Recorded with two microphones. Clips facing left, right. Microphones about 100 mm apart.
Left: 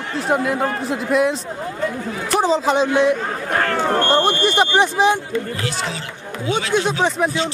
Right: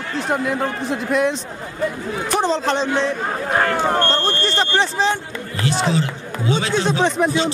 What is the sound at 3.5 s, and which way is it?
Speech, 15° right (ahead or behind).